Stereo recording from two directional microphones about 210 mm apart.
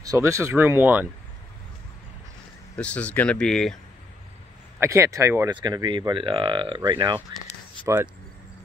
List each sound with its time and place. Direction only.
0.0 s speech: 15° right (ahead or behind)
2.7 s speech: 5° left (ahead or behind)
4.7 s speech: 15° right (ahead or behind)